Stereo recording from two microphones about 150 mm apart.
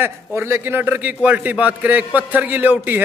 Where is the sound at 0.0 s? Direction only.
15° right (ahead or behind).